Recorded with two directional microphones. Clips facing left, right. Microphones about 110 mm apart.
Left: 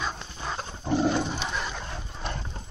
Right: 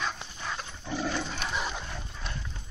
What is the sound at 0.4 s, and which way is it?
Dog, 30° left (ahead or behind).